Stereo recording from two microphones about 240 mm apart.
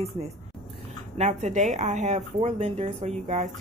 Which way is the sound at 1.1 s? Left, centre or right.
Right.